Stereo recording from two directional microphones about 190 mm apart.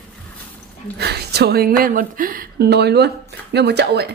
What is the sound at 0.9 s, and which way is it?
Speech, 55° right (ahead or behind).